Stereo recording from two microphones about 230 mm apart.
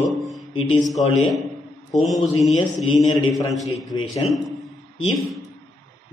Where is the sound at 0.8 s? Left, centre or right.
Centre.